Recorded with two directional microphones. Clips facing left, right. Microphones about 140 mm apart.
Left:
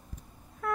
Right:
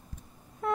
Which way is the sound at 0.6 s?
25° right (ahead or behind).